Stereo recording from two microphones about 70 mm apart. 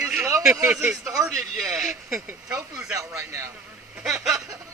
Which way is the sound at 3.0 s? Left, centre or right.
Right.